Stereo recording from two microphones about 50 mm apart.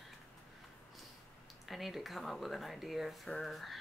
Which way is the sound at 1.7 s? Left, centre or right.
Centre.